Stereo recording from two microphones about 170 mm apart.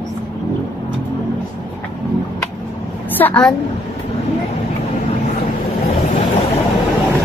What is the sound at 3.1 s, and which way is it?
Speech, 10° left (ahead or behind).